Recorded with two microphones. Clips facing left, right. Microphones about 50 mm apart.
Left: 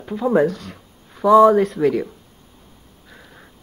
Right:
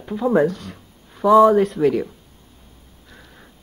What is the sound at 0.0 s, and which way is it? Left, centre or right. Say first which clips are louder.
Speech: even; centre.